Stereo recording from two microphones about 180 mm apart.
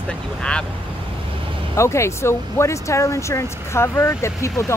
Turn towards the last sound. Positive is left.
turn(degrees=15)  # may be behind; listen again after turning